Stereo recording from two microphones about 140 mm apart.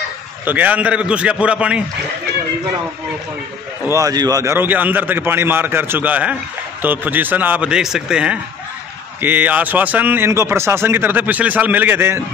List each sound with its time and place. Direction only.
0.5 s speech: 10° right (ahead or behind)
3.8 s speech: 25° right (ahead or behind)